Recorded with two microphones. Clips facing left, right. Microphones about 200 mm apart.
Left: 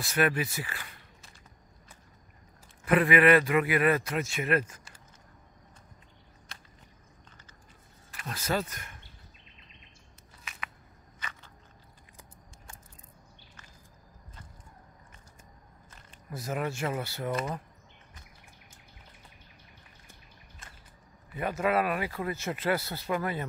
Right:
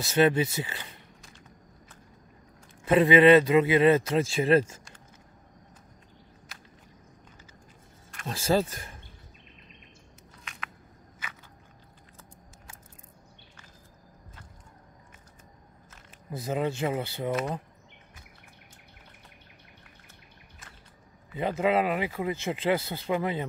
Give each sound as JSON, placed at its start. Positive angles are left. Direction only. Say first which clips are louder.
{"t": 0.0, "sound": "speech", "louder": "right 5 dB", "side_deg": -25}
{"t": 2.8, "sound": "speech", "louder": "right 4 dB", "side_deg": -25}
{"t": 8.3, "sound": "speech", "louder": "right 6 dB", "side_deg": -30}
{"t": 10.4, "sound": "a sound", "louder": "even", "side_deg": 5}
{"t": 16.3, "sound": "speech", "louder": "right 4 dB", "side_deg": -20}
{"t": 17.3, "sound": "speech", "louder": "right 3 dB", "side_deg": 0}
{"t": 20.6, "sound": "a sound", "louder": "right 1 dB", "side_deg": 0}
{"t": 21.4, "sound": "speech", "louder": "right 3 dB", "side_deg": -20}